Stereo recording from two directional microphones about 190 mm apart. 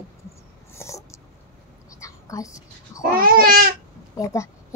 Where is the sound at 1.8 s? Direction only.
15° left (ahead or behind).